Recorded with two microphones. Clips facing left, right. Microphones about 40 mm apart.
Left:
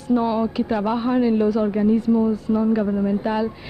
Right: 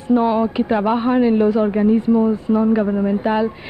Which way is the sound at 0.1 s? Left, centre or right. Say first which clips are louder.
Right 4 dB; right.